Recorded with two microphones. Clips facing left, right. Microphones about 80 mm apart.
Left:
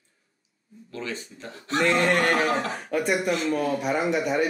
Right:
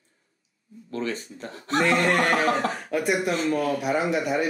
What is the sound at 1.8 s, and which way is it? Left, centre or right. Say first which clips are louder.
Speech: even; centre.